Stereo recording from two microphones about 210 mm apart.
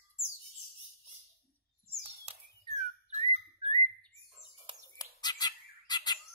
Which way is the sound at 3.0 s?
30° right (ahead or behind).